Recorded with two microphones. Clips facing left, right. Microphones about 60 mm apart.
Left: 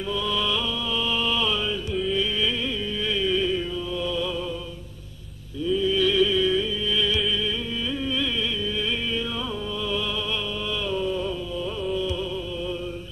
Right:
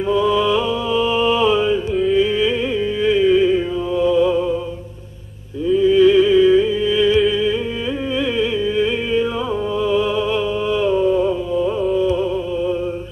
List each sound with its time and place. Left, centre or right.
0.1 s music: right
5.8 s music: right
7.2 s humming: right
8.2 s music: right